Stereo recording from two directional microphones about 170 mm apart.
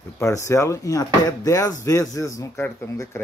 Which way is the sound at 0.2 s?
15° left (ahead or behind).